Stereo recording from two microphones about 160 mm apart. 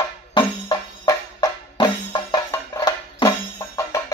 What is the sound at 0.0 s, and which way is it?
Music, 30° left (ahead or behind).